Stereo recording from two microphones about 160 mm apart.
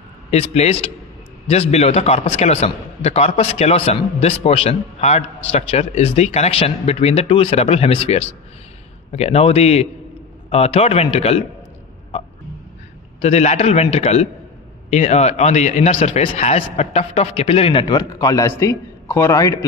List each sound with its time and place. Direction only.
0.3 s a man's voice: 40° left (ahead or behind)
13.2 s a man's voice: 45° left (ahead or behind); by 19.6 s 20° left (ahead or behind)